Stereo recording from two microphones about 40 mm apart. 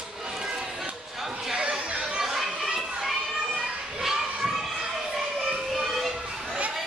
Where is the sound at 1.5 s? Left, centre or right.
Centre.